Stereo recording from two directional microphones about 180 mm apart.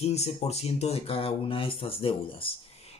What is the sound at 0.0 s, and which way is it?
Speech, 35° left (ahead or behind).